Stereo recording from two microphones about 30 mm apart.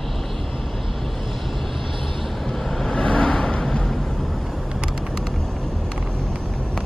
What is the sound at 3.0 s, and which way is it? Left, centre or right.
Vehicle, left.